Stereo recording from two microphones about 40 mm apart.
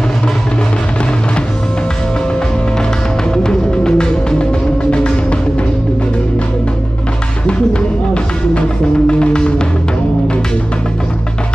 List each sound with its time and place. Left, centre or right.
3.4 s music: left
8.1 s music: left